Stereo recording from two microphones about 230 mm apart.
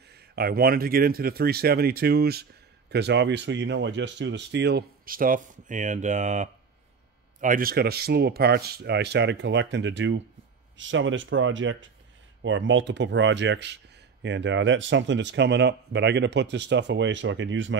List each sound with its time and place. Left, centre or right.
0.1 s speech: right